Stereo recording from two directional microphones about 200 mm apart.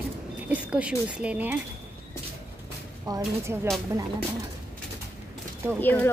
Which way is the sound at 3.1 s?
15° right (ahead or behind).